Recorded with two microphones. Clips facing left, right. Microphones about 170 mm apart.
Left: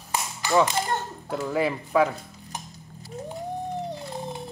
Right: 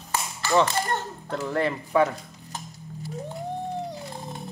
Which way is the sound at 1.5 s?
5° left (ahead or behind).